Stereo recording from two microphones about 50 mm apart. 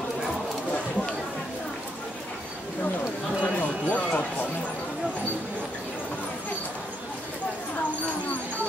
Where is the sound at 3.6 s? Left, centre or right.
Left.